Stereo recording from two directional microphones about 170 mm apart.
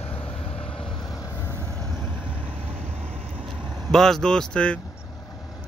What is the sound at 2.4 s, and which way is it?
Vehicle, 35° right (ahead or behind).